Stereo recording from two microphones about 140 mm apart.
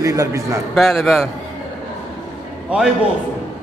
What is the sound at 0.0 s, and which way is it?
Speech, 25° right (ahead or behind).